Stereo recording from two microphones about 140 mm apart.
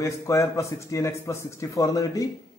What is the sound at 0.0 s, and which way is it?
A man's voice, 20° left (ahead or behind).